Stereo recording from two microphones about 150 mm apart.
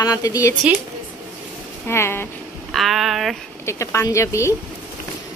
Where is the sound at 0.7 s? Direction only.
10° right (ahead or behind).